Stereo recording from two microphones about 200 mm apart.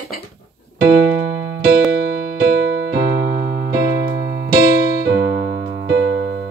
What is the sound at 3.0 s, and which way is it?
Electric piano, 55° right (ahead or behind).